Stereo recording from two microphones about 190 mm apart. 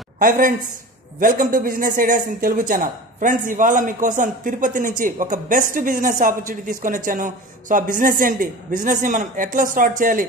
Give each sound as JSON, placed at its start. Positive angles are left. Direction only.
{"t": 0.2, "sound": "speech", "side_deg": -45}